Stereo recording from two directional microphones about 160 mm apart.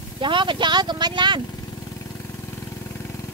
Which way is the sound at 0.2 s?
30° right (ahead or behind).